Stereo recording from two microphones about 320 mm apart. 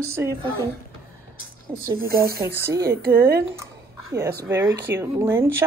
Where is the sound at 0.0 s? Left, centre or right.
Centre.